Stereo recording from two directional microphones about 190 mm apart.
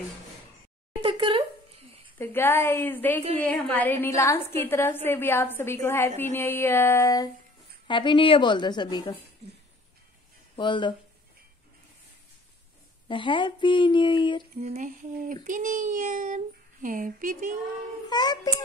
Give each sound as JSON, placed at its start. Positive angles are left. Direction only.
{"t": 1.0, "sound": "a sound", "side_deg": -30}
{"t": 2.1, "sound": "a woman's voice", "side_deg": 10}
{"t": 10.5, "sound": "speech", "side_deg": 25}
{"t": 13.1, "sound": "a woman's voice", "side_deg": 25}
{"t": 14.6, "sound": "speech", "side_deg": -40}
{"t": 18.1, "sound": "a woman's voice", "side_deg": 20}